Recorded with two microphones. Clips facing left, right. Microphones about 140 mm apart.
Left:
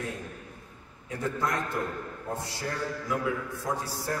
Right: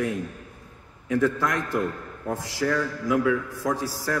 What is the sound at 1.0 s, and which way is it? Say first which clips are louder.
A man's voice: right 7 dB; 90° right.